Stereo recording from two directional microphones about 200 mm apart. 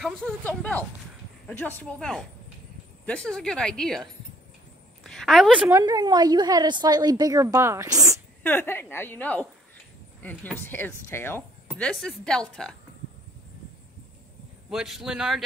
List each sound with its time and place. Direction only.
0.0 s a woman's voice: 5° left (ahead or behind); by 8.2 s 15° right (ahead or behind)
8.4 s a woman's voice: 10° left (ahead or behind)
10.6 s a woman's voice: 10° left (ahead or behind)
14.7 s speech: centre (ahead or behind)